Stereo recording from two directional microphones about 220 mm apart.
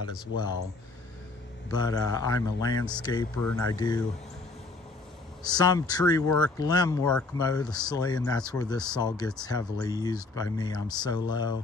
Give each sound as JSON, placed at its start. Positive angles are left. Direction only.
{"t": 1.7, "sound": "speech", "side_deg": 20}
{"t": 5.4, "sound": "speech", "side_deg": 20}